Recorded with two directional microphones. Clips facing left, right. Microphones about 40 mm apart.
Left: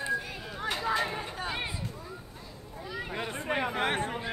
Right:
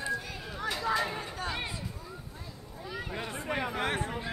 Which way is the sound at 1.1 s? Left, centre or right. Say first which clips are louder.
Left 1 dB; centre.